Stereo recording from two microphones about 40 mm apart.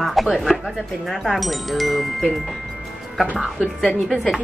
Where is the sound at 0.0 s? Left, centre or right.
Centre.